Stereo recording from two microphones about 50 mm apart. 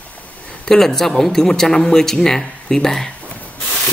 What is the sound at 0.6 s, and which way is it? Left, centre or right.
Speech, centre.